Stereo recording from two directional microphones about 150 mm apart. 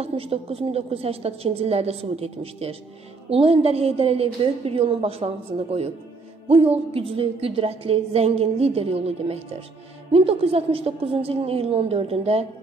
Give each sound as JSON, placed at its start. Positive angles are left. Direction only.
{"t": 0.0, "sound": "speech", "side_deg": -40}